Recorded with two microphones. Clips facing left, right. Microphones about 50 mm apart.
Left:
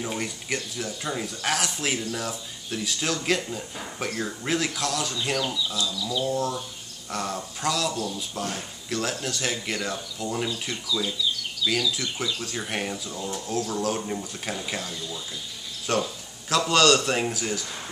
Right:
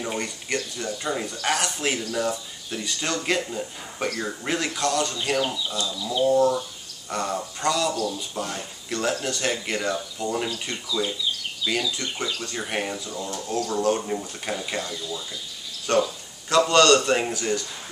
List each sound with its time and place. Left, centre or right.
0.0 s speech: centre
5.4 s a sound: right
5.7 s speech: centre
5.9 s a sound: right
6.2 s speech: centre
7.9 s speech: right
8.4 s speech: centre
11.9 s speech: centre